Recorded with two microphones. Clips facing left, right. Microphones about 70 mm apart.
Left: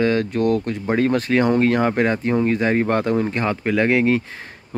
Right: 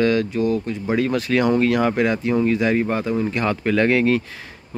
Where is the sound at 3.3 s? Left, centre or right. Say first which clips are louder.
Even; left.